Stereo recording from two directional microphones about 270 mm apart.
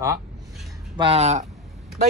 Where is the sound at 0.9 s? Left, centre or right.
Right.